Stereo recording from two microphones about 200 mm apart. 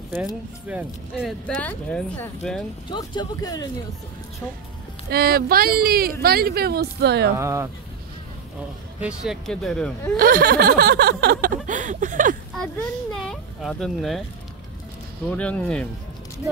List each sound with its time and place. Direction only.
0.7 s speech: 5° right (ahead or behind)
2.9 s speech: 20° left (ahead or behind)
5.1 s a sound: 50° right (ahead or behind)
7.3 s speech: 15° right (ahead or behind)
9.0 s speech: centre (ahead or behind)
10.1 s a sound: 45° right (ahead or behind)
11.5 s a sound: 40° right (ahead or behind)
13.1 s speech: centre (ahead or behind)
15.2 s speech: 5° left (ahead or behind)